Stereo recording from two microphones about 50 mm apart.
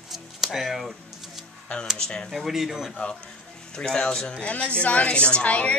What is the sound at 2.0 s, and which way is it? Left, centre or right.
Speech, centre.